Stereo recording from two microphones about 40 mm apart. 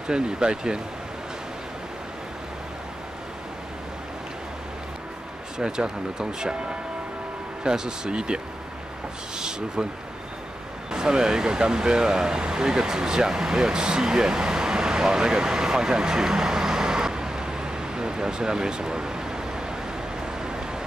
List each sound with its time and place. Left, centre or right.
0.1 s speech: centre
5.6 s speech: centre
9.8 s speech: centre
20.2 s a sound: centre